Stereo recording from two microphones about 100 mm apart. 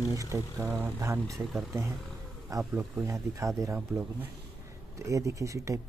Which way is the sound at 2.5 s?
35° right (ahead or behind).